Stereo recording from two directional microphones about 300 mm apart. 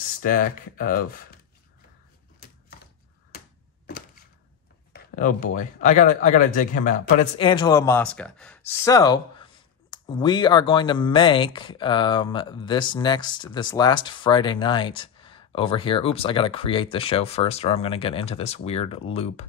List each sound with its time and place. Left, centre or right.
0.2 s speech: left
4.9 s speech: left